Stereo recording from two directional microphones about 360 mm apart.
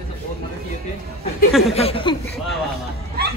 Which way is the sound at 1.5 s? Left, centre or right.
Centre.